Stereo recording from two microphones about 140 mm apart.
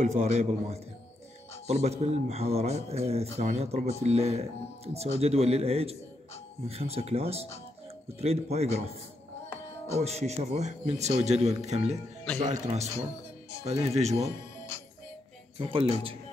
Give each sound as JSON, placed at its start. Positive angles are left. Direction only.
{"t": 0.0, "sound": "a man's voice", "side_deg": -55}
{"t": 9.9, "sound": "a man's voice", "side_deg": -50}
{"t": 15.5, "sound": "speech", "side_deg": -40}